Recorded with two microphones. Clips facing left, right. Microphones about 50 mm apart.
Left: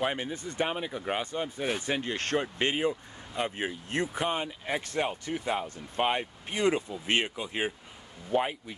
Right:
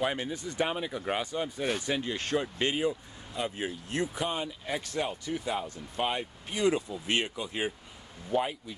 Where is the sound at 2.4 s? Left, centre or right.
Left.